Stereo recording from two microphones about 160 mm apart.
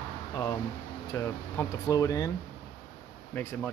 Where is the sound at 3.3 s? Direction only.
15° left (ahead or behind).